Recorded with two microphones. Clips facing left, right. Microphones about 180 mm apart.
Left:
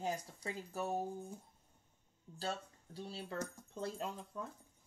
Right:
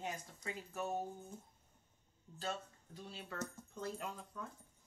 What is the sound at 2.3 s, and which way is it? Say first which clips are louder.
Speech: left 2 dB; 35° left (ahead or behind).